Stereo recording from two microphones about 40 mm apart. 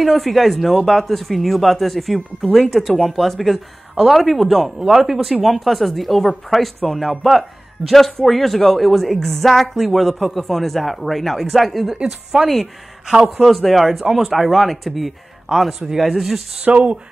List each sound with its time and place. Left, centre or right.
0.0 s speech: centre
12.3 s speech: centre
13.2 s speech: centre
16.6 s speech: right